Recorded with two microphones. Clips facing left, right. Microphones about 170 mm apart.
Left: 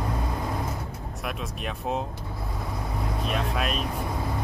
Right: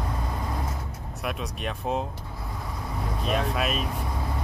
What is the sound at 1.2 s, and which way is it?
Speech, centre (ahead or behind).